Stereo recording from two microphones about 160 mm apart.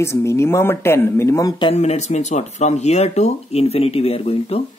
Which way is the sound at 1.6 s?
40° left (ahead or behind).